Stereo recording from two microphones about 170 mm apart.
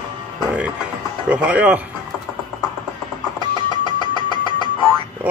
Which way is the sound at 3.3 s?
25° right (ahead or behind).